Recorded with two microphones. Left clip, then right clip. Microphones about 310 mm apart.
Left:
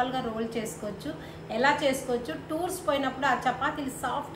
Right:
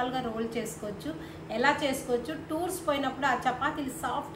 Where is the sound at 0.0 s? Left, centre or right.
Centre.